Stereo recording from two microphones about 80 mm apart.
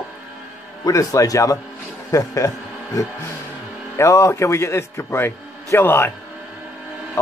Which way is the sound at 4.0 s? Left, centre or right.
Left.